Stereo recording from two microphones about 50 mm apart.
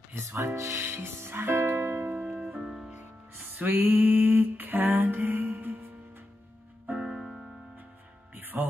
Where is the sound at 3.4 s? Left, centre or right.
Right.